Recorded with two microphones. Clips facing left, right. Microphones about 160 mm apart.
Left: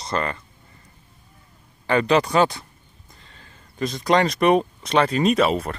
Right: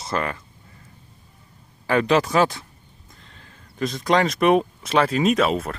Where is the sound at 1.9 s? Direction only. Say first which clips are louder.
Even; centre (ahead or behind).